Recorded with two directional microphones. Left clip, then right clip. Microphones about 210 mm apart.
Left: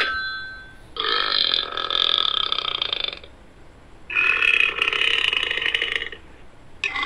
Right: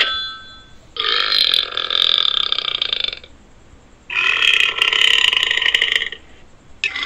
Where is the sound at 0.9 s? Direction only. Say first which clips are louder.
Right 5 dB; 15° left (ahead or behind).